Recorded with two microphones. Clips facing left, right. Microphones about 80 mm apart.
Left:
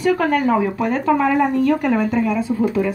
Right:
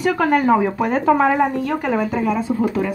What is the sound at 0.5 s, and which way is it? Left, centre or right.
A woman's voice, centre.